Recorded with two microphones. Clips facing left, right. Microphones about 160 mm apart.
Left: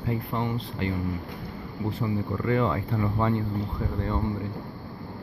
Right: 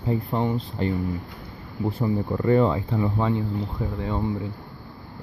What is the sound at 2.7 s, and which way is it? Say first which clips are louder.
Speech: right 3 dB; 20° right (ahead or behind).